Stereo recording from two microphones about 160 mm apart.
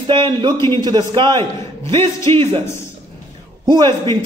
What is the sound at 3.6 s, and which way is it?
Speech, 25° right (ahead or behind).